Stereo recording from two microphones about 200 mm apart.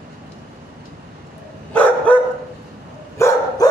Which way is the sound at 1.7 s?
5° left (ahead or behind).